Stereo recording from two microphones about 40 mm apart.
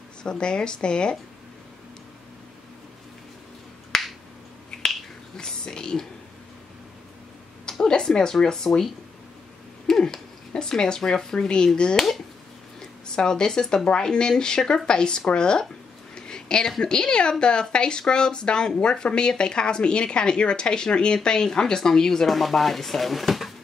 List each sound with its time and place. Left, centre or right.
0.2 s a woman's voice: left
3.9 s finger snapping: centre
5.4 s a woman's voice: centre
7.9 s speech: centre
9.8 s a sound: centre
10.5 s a woman's voice: centre
13.0 s a woman's voice: centre
16.2 s a sound: centre
16.8 s a woman's voice: left
22.3 s speech: centre